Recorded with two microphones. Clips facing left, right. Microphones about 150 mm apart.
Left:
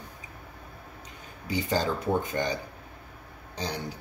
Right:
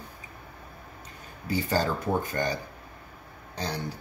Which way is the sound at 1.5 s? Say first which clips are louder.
Right 1 dB; 15° left (ahead or behind).